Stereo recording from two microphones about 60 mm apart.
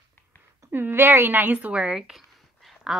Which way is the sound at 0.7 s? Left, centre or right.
Right.